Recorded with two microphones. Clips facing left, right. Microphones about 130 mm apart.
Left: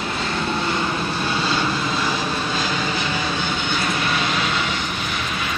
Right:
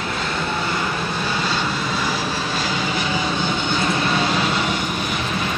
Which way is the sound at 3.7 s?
25° right (ahead or behind).